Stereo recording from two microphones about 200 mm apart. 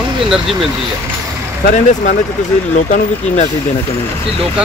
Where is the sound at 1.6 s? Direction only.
40° left (ahead or behind).